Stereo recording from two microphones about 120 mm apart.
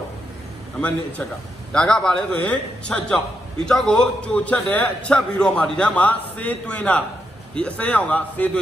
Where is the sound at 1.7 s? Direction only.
5° left (ahead or behind).